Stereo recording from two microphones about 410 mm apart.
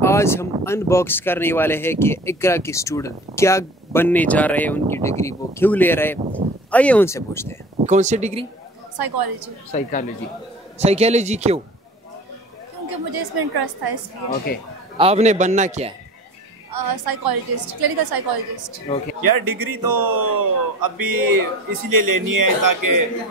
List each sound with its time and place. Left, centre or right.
0.0 s speech: centre
7.7 s speech: centre
8.9 s a woman's voice: right
9.7 s speech: centre
10.8 s a man's voice: centre
12.8 s a woman's voice: right
15.0 s a man's voice: centre
16.7 s a woman's voice: right